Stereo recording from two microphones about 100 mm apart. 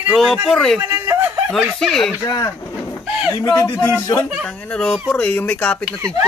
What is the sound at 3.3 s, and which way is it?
Speech, 35° left (ahead or behind).